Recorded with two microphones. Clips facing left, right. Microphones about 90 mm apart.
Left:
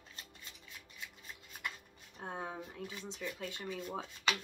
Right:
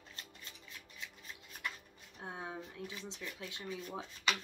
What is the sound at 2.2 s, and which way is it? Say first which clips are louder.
Speech: left 2 dB; 45° left (ahead or behind).